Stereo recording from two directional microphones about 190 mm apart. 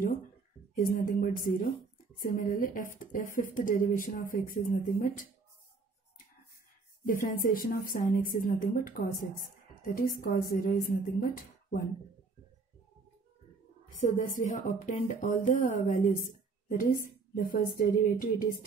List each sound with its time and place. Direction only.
0.7 s speech: 45° left (ahead or behind)
7.1 s speech: 45° left (ahead or behind)
13.8 s speech: 40° left (ahead or behind)